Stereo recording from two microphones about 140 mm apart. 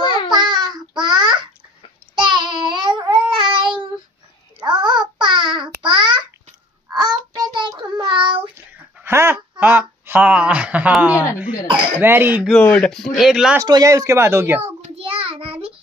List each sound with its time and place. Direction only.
0.0 s child singing: 35° left (ahead or behind)
0.3 s babbling: 30° right (ahead or behind)
2.1 s child singing: 35° right (ahead or behind)
8.9 s a sound: 15° right (ahead or behind)
12.0 s speech: 15° right (ahead or behind)
12.5 s speech: 10° left (ahead or behind)
13.6 s speech: 25° right (ahead or behind)
15.0 s child singing: 40° right (ahead or behind)